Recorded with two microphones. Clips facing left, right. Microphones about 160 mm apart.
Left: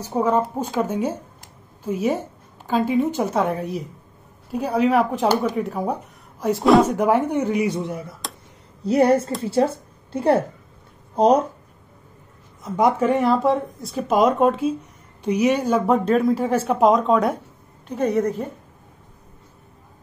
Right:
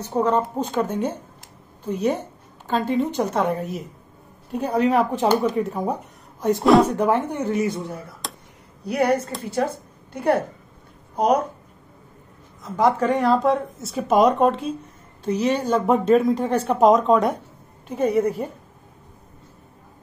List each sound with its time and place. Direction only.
0.0 s a woman's voice: 10° left (ahead or behind)
7.0 s a woman's voice: 15° left (ahead or behind)
8.2 s a sound: centre (ahead or behind)
8.8 s speech: 25° left (ahead or behind)
12.6 s speech: 20° left (ahead or behind)
13.0 s a woman's voice: 5° left (ahead or behind)
15.9 s a woman's voice: centre (ahead or behind)